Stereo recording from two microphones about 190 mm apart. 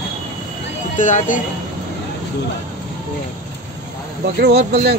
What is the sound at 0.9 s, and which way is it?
Speech, 45° left (ahead or behind).